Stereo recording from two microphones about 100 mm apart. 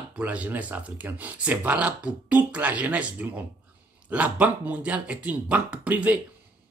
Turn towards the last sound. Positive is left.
turn(degrees=-15)  # may be behind; listen again after turning